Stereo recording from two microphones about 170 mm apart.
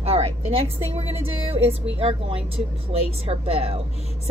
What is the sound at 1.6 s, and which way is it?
A woman's voice, 35° right (ahead or behind).